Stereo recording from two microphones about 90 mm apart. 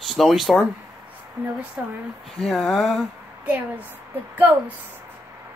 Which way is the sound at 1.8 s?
20° right (ahead or behind).